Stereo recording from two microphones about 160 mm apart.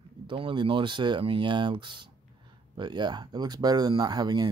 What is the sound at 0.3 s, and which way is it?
Speech, 30° right (ahead or behind).